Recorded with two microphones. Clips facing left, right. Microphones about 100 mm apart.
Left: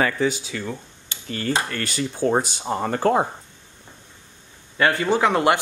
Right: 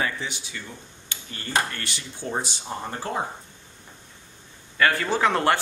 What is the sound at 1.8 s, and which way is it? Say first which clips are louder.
Speech: left 10 dB; 45° left (ahead or behind).